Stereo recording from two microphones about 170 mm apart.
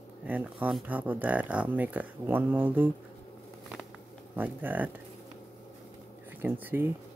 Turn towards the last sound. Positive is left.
turn(degrees=-10)  # may be behind; listen again after turning